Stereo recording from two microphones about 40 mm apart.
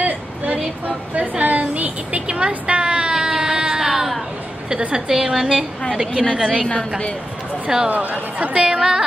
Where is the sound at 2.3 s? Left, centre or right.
Right.